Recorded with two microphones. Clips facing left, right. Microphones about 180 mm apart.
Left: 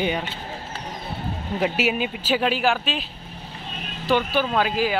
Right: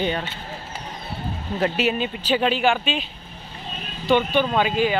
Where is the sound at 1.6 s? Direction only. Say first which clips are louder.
Right 1 dB; 10° left (ahead or behind).